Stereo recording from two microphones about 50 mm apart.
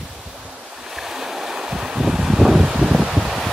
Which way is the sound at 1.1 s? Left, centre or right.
Centre.